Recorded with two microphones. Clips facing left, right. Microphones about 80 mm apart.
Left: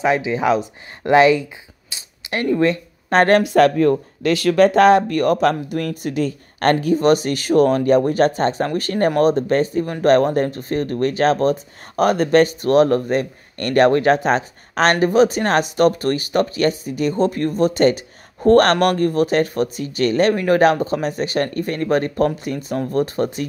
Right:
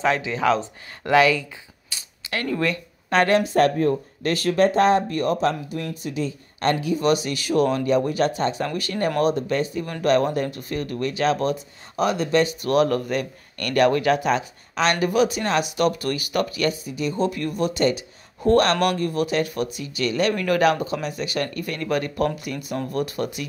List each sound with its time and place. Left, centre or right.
0.0 s speech: centre
1.9 s coin: left
3.2 s speech: left
3.4 s speech: left
12.0 s speech: left
12.6 s speech: left